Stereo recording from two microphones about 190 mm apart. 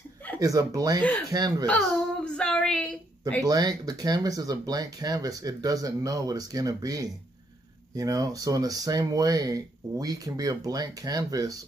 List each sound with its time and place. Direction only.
0.4 s speech: 20° right (ahead or behind)
1.7 s a woman's voice: 5° left (ahead or behind)
3.4 s speech: 20° right (ahead or behind)